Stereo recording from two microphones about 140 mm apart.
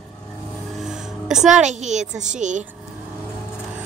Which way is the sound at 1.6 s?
60° right (ahead or behind).